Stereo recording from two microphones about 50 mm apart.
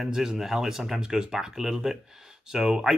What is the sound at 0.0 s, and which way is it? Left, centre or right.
Speech, centre.